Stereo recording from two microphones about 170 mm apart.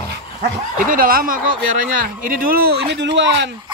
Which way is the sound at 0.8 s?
55° right (ahead or behind).